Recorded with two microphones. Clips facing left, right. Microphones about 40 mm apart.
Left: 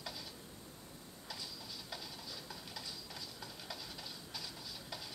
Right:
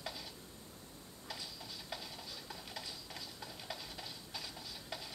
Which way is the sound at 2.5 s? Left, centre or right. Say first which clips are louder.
Right 1 dB; right.